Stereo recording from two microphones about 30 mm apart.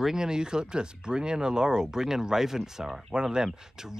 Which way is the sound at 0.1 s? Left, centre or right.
Right.